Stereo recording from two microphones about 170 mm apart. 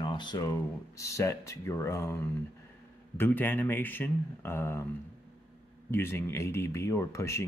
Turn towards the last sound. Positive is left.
turn(degrees=15)  # may be behind; listen again after turning